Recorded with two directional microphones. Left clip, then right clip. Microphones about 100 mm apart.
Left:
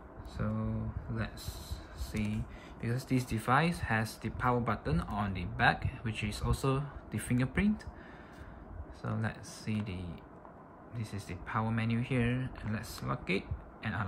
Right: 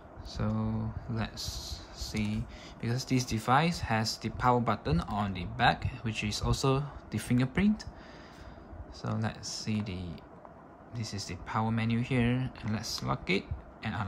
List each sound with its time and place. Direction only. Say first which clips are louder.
0.4 s speech: right 3 dB; 20° right (ahead or behind)
9.0 s speech: right 3 dB; 10° right (ahead or behind)